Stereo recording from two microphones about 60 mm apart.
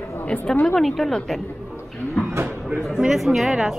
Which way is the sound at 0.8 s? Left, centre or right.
Centre.